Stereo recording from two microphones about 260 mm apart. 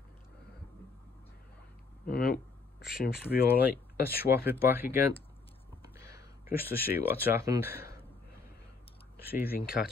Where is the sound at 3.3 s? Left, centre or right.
Left.